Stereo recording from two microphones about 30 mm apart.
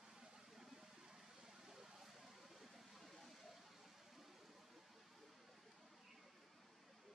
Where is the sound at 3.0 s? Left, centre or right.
Centre.